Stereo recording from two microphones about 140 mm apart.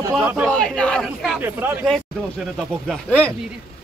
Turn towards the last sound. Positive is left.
turn(degrees=10)  # may be behind; listen again after turning